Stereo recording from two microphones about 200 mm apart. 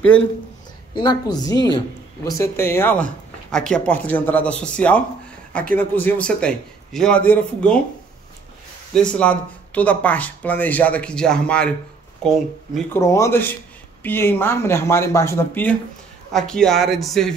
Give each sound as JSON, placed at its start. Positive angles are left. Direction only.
{"t": 0.1, "sound": "a man's voice", "side_deg": 5}
{"t": 0.9, "sound": "a woman's voice", "side_deg": 20}
{"t": 8.9, "sound": "a man's voice", "side_deg": 5}
{"t": 12.9, "sound": "a man's voice", "side_deg": 15}